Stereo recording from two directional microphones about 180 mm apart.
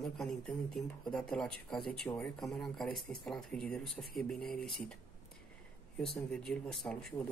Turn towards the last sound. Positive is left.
turn(degrees=5)  # may be behind; listen again after turning